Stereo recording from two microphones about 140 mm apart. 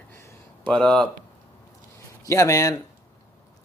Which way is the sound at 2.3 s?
20° left (ahead or behind).